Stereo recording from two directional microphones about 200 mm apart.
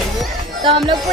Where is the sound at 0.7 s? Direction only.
25° right (ahead or behind).